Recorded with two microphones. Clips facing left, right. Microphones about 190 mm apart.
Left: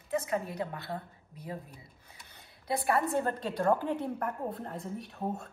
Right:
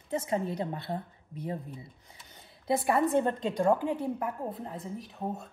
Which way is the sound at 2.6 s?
20° right (ahead or behind).